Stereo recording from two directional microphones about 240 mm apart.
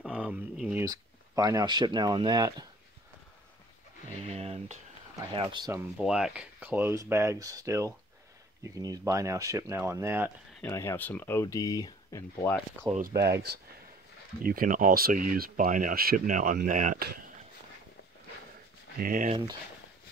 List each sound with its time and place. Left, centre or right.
0.0 s speech: centre
4.2 s a sound: right
5.3 s speech: centre
10.6 s speech: centre
12.9 s speech: centre
14.4 s speech: right
18.9 s speech: right